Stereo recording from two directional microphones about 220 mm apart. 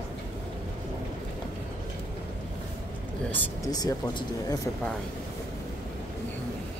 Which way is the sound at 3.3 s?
10° left (ahead or behind).